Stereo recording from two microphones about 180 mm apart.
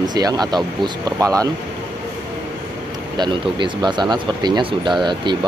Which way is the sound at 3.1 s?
25° right (ahead or behind).